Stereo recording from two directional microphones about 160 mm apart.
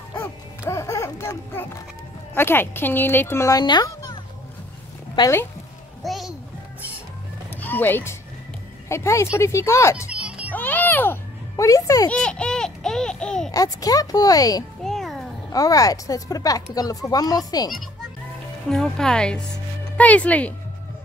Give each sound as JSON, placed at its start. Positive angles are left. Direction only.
{"t": 0.1, "sound": "music", "side_deg": 15}
{"t": 2.3, "sound": "speech", "side_deg": 15}
{"t": 6.0, "sound": "music", "side_deg": 0}
{"t": 7.6, "sound": "speech", "side_deg": 10}
{"t": 10.0, "sound": "music", "side_deg": -5}
{"t": 10.5, "sound": "a sound", "side_deg": 10}
{"t": 12.1, "sound": "babbling", "side_deg": 5}
{"t": 13.5, "sound": "speech", "side_deg": 20}
{"t": 14.8, "sound": "music", "side_deg": 0}
{"t": 15.5, "sound": "speech", "side_deg": 20}
{"t": 18.7, "sound": "speech", "side_deg": 5}